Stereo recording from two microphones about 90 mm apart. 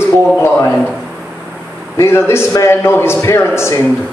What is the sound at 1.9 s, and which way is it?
A man's voice, 30° left (ahead or behind).